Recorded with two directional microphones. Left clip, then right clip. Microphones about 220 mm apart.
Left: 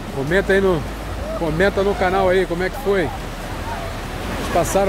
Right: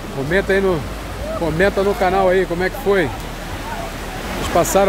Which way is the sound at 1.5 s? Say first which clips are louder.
Right 1 dB; 5° right (ahead or behind).